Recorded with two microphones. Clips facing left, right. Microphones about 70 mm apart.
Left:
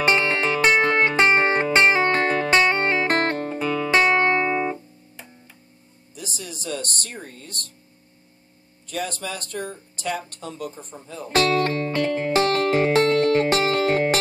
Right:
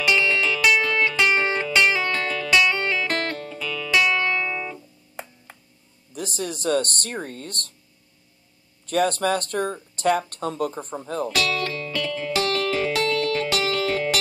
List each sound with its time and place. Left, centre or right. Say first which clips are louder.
0.0 s music: left 1 dB; left
6.1 s speech: right 7 dB; right
8.8 s speech: right 8 dB; right
11.2 s music: left 8 dB; left